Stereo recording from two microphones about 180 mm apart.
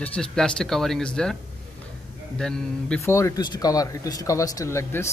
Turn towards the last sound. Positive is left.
turn(degrees=15)  # may be behind; listen again after turning